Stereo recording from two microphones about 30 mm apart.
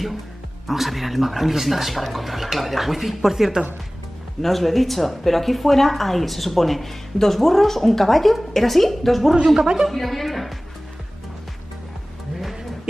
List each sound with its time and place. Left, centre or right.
0.7 s a woman's voice: centre
4.4 s a woman's voice: centre
9.6 s a woman's voice: right
9.8 s a woman's voice: centre